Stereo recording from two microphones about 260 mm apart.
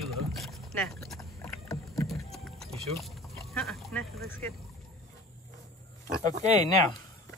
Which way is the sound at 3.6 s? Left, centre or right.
Centre.